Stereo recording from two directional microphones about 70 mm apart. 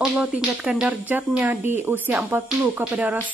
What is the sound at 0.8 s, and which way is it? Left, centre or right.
Speech, right.